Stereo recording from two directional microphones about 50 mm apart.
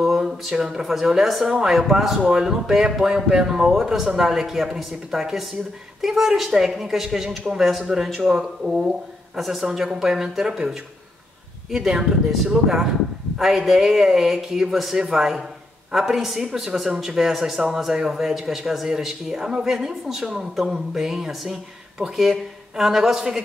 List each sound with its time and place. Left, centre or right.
0.0 s speech: centre
9.3 s a man's voice: centre